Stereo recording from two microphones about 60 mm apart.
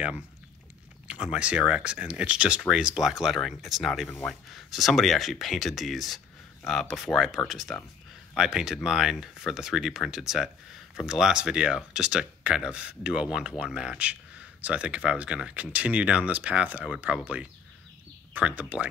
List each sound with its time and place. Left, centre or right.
1.0 s speech: centre
18.5 s speech: right